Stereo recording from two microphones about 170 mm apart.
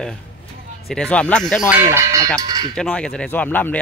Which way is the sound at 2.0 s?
15° right (ahead or behind).